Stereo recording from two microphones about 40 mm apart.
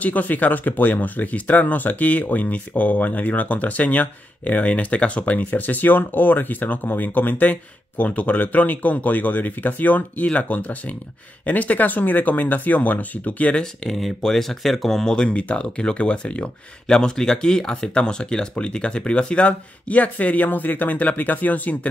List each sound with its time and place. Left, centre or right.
0.0 s speech: left
13.8 s speech: centre
15.1 s speech: left
16.8 s speech: centre; by 21.7 s left